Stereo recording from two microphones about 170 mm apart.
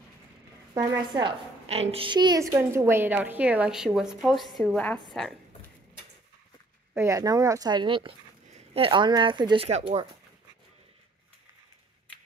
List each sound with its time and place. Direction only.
0.7 s a woman's voice: 20° right (ahead or behind); by 5.3 s centre (ahead or behind)
6.9 s speech: 15° right (ahead or behind)
9.7 s speech: 40° right (ahead or behind)